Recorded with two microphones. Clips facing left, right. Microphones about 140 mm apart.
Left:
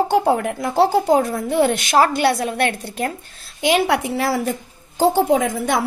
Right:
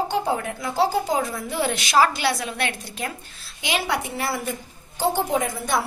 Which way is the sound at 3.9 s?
90° left.